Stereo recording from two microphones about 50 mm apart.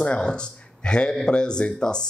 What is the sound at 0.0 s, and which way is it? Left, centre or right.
Speech, left.